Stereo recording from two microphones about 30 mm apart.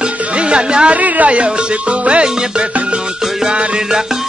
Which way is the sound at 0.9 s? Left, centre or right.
Right.